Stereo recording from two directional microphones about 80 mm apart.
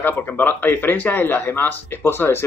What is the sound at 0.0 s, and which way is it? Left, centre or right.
Speech, left.